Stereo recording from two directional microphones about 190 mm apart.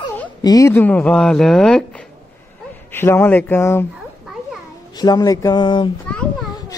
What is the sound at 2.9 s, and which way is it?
Speech, 10° left (ahead or behind).